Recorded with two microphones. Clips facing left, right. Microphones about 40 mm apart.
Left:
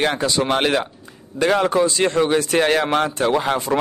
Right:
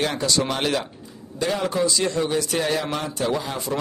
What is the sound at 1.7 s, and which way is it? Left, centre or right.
Speech, left.